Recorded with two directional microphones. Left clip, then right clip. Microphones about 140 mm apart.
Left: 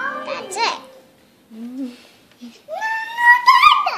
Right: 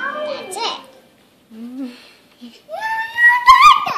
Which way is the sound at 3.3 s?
80° left.